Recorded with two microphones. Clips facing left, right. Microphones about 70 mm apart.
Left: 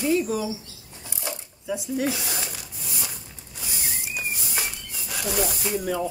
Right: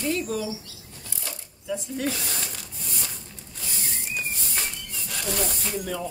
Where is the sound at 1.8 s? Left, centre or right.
Centre.